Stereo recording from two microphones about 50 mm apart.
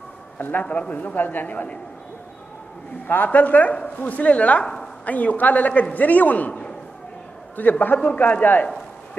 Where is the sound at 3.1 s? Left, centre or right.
Left.